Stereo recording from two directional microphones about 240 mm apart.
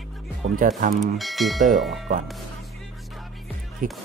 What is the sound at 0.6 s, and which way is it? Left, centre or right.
Speech, right.